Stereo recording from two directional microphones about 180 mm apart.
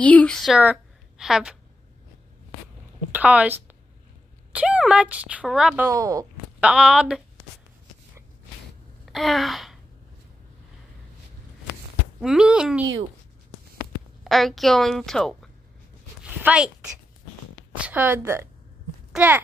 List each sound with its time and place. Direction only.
0.0 s a woman's voice: 5° left (ahead or behind)
3.1 s a woman's voice: 10° right (ahead or behind)
5.9 s a woman's voice: 15° right (ahead or behind)
6.6 s a woman's voice: 5° right (ahead or behind)
9.0 s a sound: centre (ahead or behind)
12.2 s a woman's voice: 5° right (ahead or behind)
14.2 s a woman's voice: centre (ahead or behind)
16.2 s a sound: 5° right (ahead or behind)
17.7 s a woman's voice: 10° right (ahead or behind)